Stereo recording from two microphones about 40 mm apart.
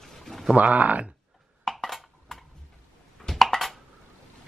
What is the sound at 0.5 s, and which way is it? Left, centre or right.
Speech, right.